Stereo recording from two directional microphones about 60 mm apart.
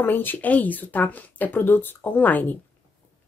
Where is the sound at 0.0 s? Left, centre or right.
Left.